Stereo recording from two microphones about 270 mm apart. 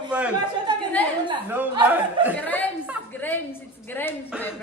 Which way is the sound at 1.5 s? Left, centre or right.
Centre.